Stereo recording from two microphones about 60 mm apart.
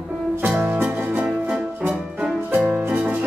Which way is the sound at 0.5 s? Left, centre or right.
Centre.